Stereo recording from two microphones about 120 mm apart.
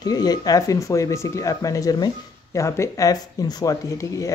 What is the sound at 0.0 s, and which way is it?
Speech, 35° left (ahead or behind).